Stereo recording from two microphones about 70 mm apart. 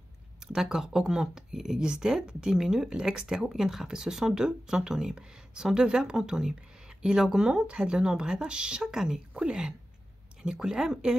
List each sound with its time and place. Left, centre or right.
0.5 s speech: centre